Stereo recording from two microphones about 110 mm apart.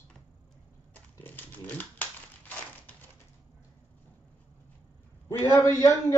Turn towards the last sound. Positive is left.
turn(degrees=25)  # may be behind; listen again after turning